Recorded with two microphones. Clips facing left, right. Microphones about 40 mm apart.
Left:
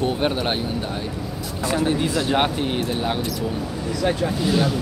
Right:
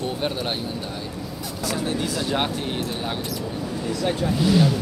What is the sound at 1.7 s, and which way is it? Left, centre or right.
Speech, left.